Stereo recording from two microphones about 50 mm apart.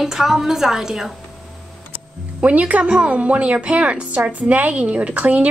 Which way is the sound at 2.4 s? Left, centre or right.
Right.